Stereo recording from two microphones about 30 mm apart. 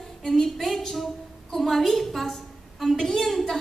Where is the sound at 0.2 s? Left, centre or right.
Centre.